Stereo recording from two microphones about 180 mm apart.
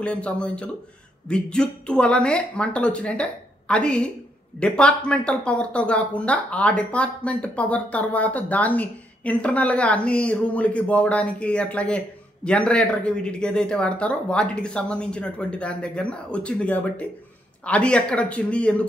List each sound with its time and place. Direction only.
0.0 s speech: 5° left (ahead or behind)